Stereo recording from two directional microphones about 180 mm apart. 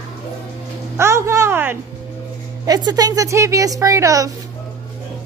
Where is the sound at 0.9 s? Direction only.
15° right (ahead or behind).